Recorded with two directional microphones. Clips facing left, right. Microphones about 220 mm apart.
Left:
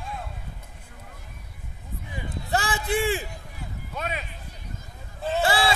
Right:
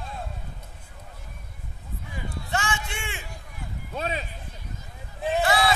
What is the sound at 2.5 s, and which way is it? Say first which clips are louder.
Run: left 6 dB; 35° left (ahead or behind).